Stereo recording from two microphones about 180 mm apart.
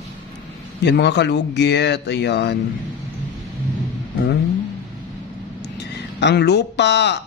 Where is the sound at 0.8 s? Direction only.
70° left (ahead or behind).